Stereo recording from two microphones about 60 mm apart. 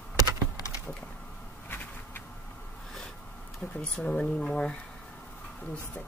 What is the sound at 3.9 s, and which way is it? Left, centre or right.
Speech, centre.